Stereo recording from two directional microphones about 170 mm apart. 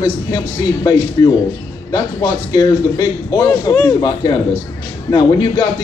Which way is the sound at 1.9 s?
20° left (ahead or behind).